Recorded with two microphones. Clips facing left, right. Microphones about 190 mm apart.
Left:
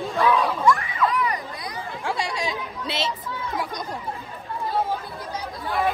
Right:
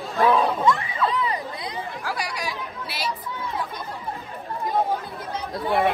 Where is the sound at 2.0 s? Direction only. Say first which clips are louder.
Left 5 dB; 25° left (ahead or behind).